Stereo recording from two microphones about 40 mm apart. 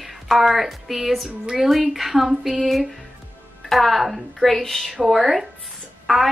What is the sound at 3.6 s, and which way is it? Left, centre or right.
Speech, centre.